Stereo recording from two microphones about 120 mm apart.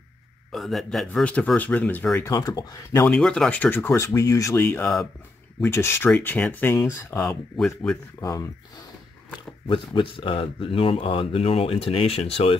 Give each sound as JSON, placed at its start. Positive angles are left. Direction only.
{"t": 0.5, "sound": "a man's voice", "side_deg": 0}
{"t": 2.3, "sound": "speech", "side_deg": 35}
{"t": 3.1, "sound": "speech", "side_deg": 5}
{"t": 7.5, "sound": "a man's voice", "side_deg": 5}
{"t": 8.2, "sound": "speech", "side_deg": 30}
{"t": 9.7, "sound": "speech", "side_deg": 45}